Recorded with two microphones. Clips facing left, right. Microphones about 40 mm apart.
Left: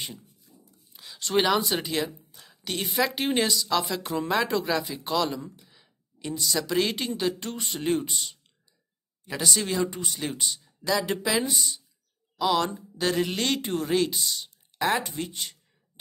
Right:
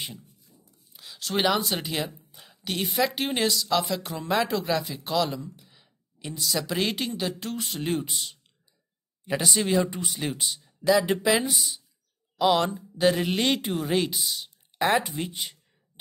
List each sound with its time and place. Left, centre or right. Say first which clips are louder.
0.9 s speech: left 3 dB; centre
9.2 s speech: right 2 dB; centre
10.8 s speech: right 5 dB; centre
12.4 s speech: right 2 dB; centre